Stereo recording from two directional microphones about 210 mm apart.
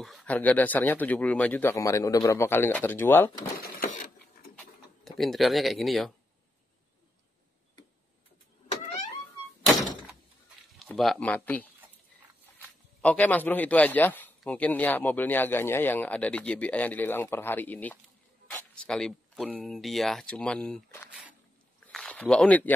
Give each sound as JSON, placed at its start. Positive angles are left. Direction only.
{"t": 0.0, "sound": "speech", "side_deg": 5}
{"t": 3.5, "sound": "printer", "side_deg": 45}
{"t": 4.6, "sound": "a sound", "side_deg": 0}
{"t": 10.8, "sound": "speech", "side_deg": 0}
{"t": 13.0, "sound": "speech", "side_deg": 5}
{"t": 21.8, "sound": "a sound", "side_deg": 5}